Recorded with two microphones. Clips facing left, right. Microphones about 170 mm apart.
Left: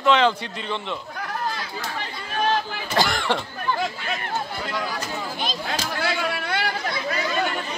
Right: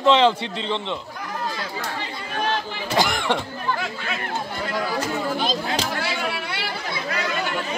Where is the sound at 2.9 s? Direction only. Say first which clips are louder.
Right 1 dB; 20° right (ahead or behind).